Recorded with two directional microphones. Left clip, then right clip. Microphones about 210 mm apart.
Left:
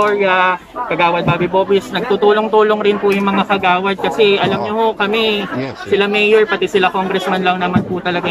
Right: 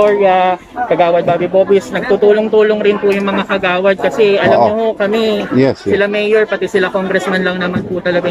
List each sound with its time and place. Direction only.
0.9 s speech: 5° left (ahead or behind)
2.2 s speech: 15° left (ahead or behind)
5.9 s speech: 10° left (ahead or behind)